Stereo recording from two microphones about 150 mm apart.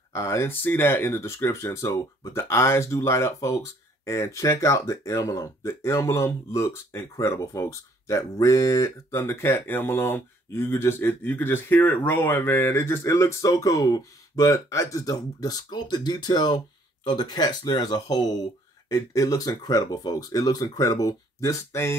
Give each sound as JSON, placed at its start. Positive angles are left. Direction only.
{"t": 0.1, "sound": "speech", "side_deg": 20}